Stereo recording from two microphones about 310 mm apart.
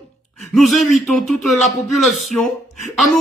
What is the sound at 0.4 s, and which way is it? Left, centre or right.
A man's voice, centre.